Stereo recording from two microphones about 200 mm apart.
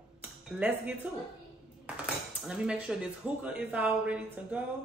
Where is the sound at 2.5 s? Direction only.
5° right (ahead or behind).